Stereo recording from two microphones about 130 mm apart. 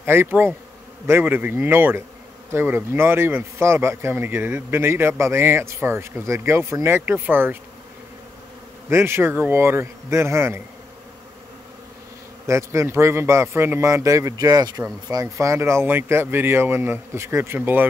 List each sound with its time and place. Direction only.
0.0 s a man's voice: 15° right (ahead or behind)
8.8 s a man's voice: 20° right (ahead or behind)
12.4 s a man's voice: 20° right (ahead or behind)